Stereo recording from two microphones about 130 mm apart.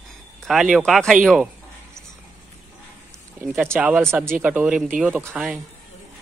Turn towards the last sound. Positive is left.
turn(degrees=-5)  # may be behind; listen again after turning